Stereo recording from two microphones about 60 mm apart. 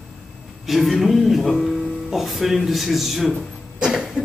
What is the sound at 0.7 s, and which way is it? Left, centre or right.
Speech, centre.